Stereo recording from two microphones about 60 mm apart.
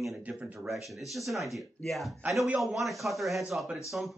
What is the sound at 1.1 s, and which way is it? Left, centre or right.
Speech, centre.